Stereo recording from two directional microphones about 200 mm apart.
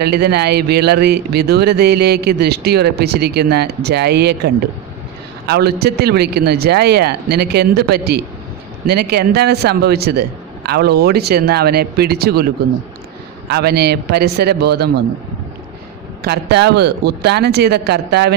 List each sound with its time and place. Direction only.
0.0 s speech: 55° right (ahead or behind)
5.5 s speech: 55° right (ahead or behind)
16.3 s speech: 55° right (ahead or behind)